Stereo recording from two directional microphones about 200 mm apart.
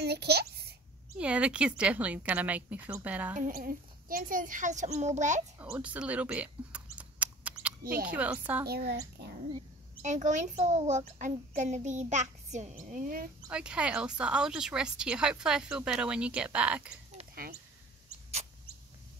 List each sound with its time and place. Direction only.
0.0 s a sound: 55° right (ahead or behind)
1.1 s a woman's voice: 5° right (ahead or behind)
3.3 s a child's voice: 45° right (ahead or behind)
5.6 s mouse: 5° right (ahead or behind)
8.1 s a woman's voice: 5° right (ahead or behind)
8.6 s speech: 50° right (ahead or behind)
10.0 s a child's voice: 35° right (ahead or behind)
13.5 s speech: 5° right (ahead or behind)